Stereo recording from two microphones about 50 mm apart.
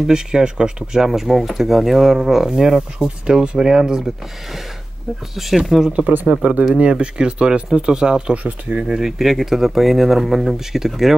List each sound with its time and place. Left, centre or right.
0.0 s speech: centre
5.3 s speech: centre
6.7 s speech: right
8.5 s speech: right
8.8 s speech: centre